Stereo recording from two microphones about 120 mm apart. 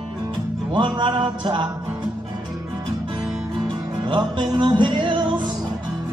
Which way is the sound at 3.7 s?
40° right (ahead or behind).